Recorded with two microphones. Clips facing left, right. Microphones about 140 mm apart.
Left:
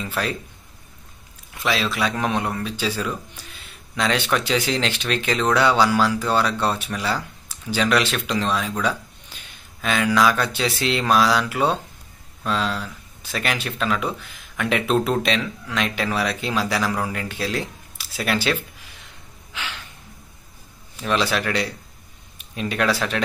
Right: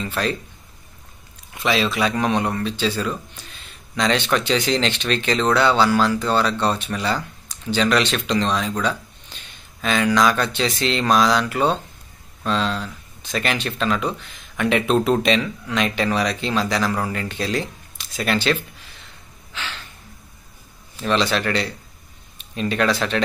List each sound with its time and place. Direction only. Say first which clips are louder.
0.0 s speech: right 2 dB; 10° left (ahead or behind)
1.6 s speech: right 3 dB; centre (ahead or behind)
19.5 s gasp: even; 10° left (ahead or behind)
20.9 s speech: right 2 dB; 10° left (ahead or behind)